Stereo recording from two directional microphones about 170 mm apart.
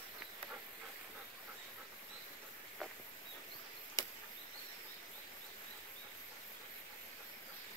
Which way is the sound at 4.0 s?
20° left (ahead or behind).